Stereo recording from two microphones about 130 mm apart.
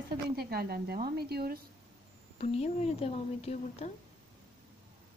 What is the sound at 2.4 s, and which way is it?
Speech, 55° left (ahead or behind).